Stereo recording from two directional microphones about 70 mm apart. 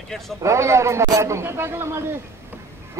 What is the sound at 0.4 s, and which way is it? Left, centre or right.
A man's voice, right.